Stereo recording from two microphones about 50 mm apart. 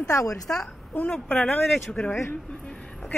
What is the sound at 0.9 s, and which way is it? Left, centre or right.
Speech, left.